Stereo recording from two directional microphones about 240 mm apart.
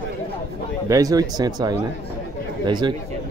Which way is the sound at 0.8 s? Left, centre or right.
Centre.